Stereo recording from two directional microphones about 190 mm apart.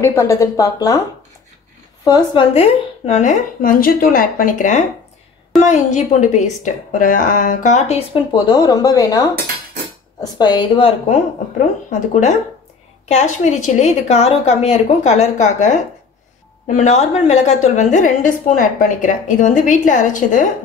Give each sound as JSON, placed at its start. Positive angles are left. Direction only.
{"t": 0.0, "sound": "speech", "side_deg": 15}
{"t": 2.0, "sound": "a woman's voice", "side_deg": 20}
{"t": 2.5, "sound": "a woman's voice", "side_deg": 35}
{"t": 8.5, "sound": "a woman's voice", "side_deg": 20}
{"t": 10.3, "sound": "a woman's voice", "side_deg": 20}